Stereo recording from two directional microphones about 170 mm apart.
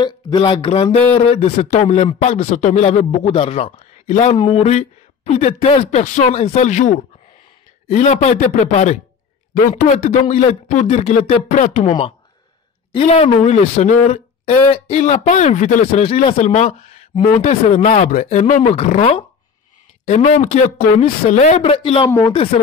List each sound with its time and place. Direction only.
0.0 s a man's voice: 30° left (ahead or behind); by 11.9 s 45° left (ahead or behind)
12.9 s speech: 35° left (ahead or behind)